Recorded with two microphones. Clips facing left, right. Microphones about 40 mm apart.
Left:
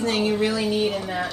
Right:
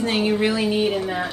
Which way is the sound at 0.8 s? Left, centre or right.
Centre.